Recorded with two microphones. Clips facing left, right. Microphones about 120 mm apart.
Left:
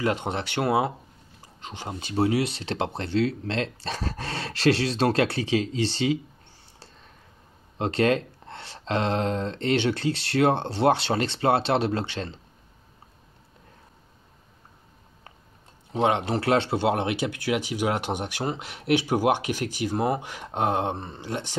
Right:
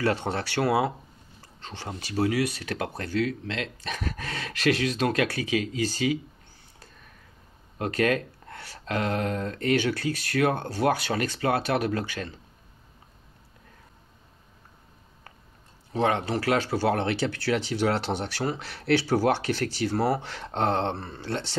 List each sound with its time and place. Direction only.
0.0 s speech: 20° left (ahead or behind)
7.8 s speech: 25° left (ahead or behind)
15.9 s speech: 20° left (ahead or behind)